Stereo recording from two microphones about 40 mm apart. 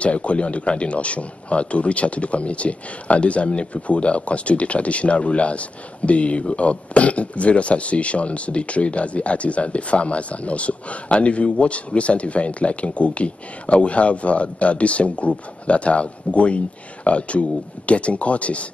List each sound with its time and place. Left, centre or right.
0.0 s a man's voice: left